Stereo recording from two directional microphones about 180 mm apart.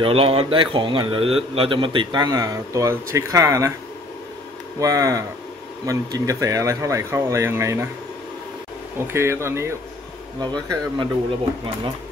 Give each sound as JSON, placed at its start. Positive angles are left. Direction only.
{"t": 0.0, "sound": "a man's voice", "side_deg": -30}
{"t": 4.7, "sound": "a man's voice", "side_deg": -20}
{"t": 9.0, "sound": "a man's voice", "side_deg": -15}